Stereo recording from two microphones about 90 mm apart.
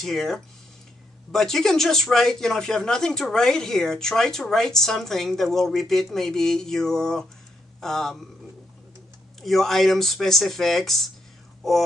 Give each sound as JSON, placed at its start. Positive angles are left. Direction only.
{"t": 0.0, "sound": "speech", "side_deg": 5}
{"t": 9.4, "sound": "speech", "side_deg": 0}